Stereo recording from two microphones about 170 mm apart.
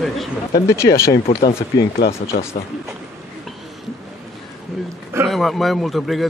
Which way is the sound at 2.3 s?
45° left (ahead or behind).